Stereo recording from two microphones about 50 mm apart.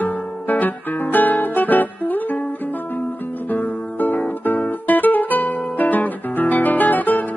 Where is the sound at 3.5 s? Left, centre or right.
Left.